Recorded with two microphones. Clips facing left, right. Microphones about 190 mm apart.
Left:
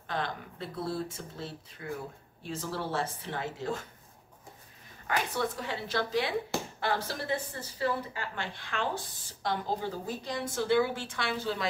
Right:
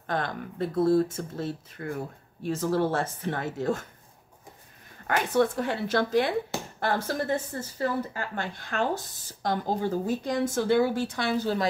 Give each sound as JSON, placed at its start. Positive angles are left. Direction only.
{"t": 0.0, "sound": "speech", "side_deg": -50}
{"t": 5.0, "sound": "speech", "side_deg": -50}